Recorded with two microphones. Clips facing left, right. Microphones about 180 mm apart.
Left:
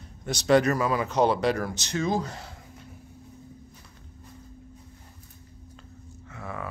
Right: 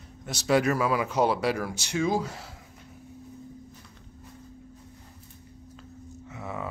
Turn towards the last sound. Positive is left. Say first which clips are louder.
# right 1 dB
turn(degrees=-20)  # may be behind; listen again after turning